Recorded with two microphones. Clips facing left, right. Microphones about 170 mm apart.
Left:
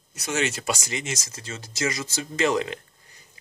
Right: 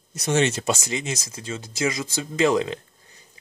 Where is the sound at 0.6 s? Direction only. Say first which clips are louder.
Right 3 dB; 20° right (ahead or behind).